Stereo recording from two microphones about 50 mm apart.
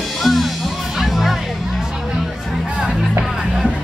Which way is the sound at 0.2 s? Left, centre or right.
Centre.